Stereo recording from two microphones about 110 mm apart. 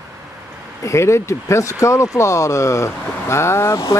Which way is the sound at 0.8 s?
25° left (ahead or behind).